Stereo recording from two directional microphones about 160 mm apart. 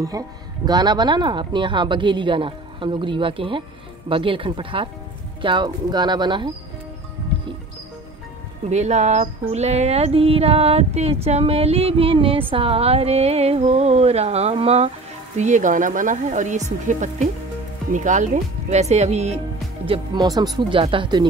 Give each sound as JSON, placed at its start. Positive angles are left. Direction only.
{"t": 0.7, "sound": "speech", "side_deg": -25}
{"t": 8.6, "sound": "speech", "side_deg": -45}
{"t": 15.3, "sound": "speech", "side_deg": -50}
{"t": 19.9, "sound": "speech", "side_deg": -25}